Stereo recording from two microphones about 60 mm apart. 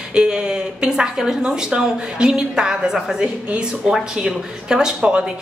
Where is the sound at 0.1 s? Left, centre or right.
Centre.